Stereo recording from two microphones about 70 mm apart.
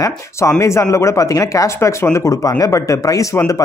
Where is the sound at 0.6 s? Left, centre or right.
Left.